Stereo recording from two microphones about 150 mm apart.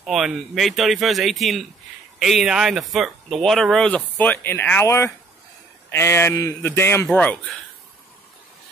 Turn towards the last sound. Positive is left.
turn(degrees=10)  # may be behind; listen again after turning